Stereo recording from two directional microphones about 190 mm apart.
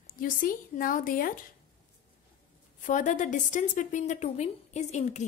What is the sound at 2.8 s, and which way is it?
A woman's voice, 40° left (ahead or behind).